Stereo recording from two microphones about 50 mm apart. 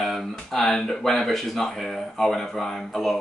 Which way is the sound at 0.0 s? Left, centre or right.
Centre.